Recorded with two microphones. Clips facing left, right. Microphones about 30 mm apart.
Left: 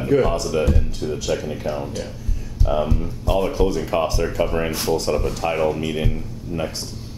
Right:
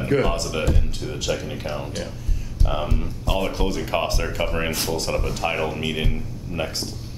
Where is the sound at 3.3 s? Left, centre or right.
Right.